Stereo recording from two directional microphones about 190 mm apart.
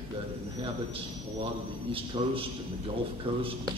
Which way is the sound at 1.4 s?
30° right (ahead or behind).